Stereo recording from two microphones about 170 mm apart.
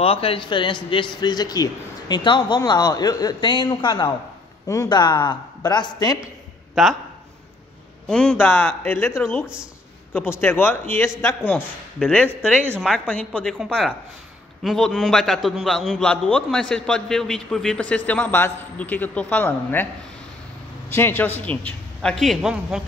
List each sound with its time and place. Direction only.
0.0 s a man's voice: 35° left (ahead or behind)
6.2 s a sound: centre (ahead or behind)
8.1 s a man's voice: 5° left (ahead or behind)
20.9 s a man's voice: 10° left (ahead or behind); by 22.8 s 5° right (ahead or behind)